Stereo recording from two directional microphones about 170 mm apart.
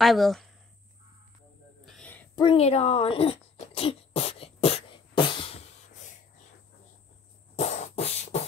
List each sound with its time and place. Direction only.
0.0 s speech: centre (ahead or behind)
1.9 s a sound: 5° left (ahead or behind)
2.3 s throat clearing: 30° left (ahead or behind)
7.5 s beatboxing: 40° left (ahead or behind)